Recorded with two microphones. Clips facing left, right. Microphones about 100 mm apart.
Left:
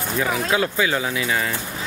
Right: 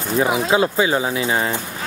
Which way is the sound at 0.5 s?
25° right (ahead or behind).